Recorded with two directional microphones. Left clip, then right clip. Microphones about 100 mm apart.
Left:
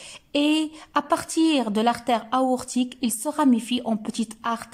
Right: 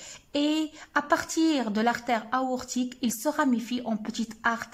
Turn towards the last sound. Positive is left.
turn(degrees=20)  # may be behind; listen again after turning